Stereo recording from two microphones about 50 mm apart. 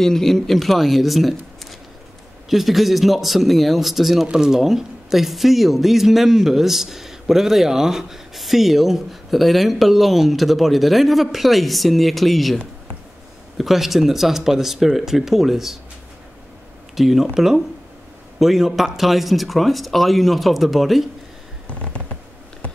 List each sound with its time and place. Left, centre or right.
0.0 s speech: centre
13.6 s speech: centre
16.9 s speech: centre
21.6 s a sound: left